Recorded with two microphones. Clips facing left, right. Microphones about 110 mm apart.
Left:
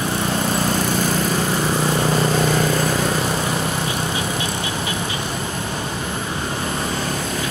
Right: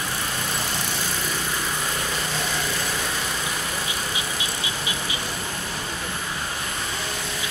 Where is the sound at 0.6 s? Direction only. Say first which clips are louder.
Left 9 dB; 45° left (ahead or behind).